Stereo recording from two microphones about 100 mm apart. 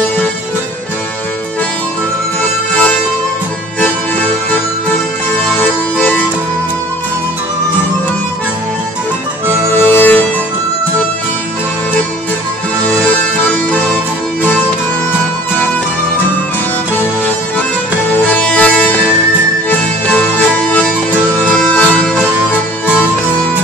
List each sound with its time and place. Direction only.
2.7 s music: 15° left (ahead or behind)
5.5 s music: 15° left (ahead or behind)
9.7 s music: 20° left (ahead or behind)
12.8 s music: 15° left (ahead or behind)
18.4 s music: 10° left (ahead or behind)